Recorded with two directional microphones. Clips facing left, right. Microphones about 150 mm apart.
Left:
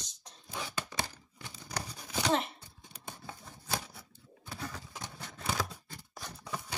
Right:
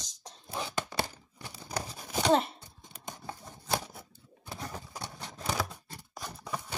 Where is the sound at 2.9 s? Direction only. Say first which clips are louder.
Right 4 dB; 50° right (ahead or behind).